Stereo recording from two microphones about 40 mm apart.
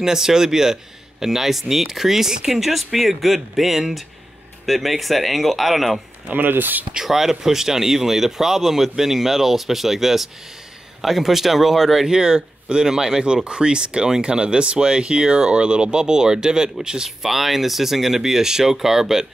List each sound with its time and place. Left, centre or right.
0.0 s speech: centre
6.2 s speech: right
7.1 s speech: centre
13.2 s speech: right
17.2 s speech: centre